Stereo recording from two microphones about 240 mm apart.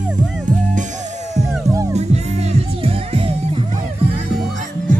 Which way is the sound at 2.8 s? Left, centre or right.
Right.